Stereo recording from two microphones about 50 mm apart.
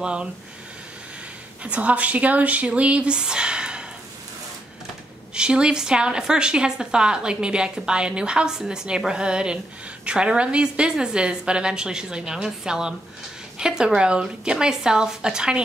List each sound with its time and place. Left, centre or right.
0.0 s speech: centre
1.6 s speech: right
5.3 s a woman's voice: centre